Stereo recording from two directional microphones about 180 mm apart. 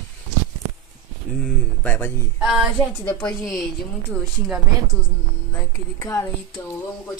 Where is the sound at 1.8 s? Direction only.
10° left (ahead or behind).